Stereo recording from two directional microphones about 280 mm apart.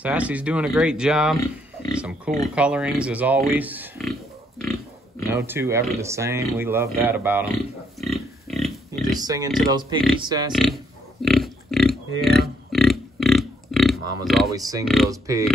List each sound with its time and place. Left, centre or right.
0.0 s speech: centre
5.3 s speech: centre
9.2 s speech: centre
10.5 s speech: centre
11.2 s a sound: centre
14.5 s speech: centre